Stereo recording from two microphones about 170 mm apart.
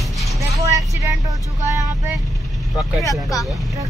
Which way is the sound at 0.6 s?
20° right (ahead or behind).